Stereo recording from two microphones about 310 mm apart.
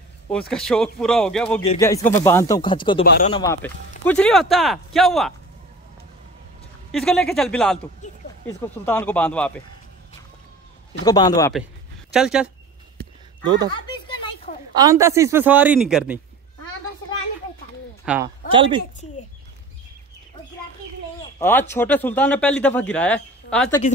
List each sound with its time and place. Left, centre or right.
0.3 s a man's voice: centre
6.9 s a man's voice: centre
11.1 s speech: centre
12.1 s a man's voice: centre
14.7 s speech: centre
18.0 s speech: centre
18.5 s a woman's voice: centre
21.4 s a man's voice: centre